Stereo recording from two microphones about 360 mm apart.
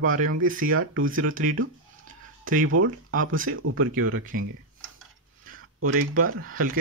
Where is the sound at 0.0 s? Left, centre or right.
Right.